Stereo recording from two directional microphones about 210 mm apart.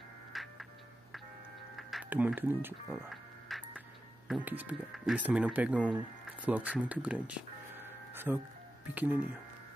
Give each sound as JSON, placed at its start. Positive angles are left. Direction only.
{"t": 0.3, "sound": "music", "side_deg": 0}
{"t": 1.8, "sound": "music", "side_deg": 0}
{"t": 4.3, "sound": "speech", "side_deg": -10}